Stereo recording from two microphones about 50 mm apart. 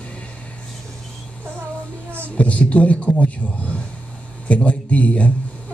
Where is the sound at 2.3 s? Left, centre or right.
Left.